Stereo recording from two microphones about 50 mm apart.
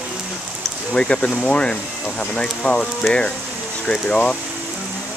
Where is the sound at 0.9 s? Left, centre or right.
Centre.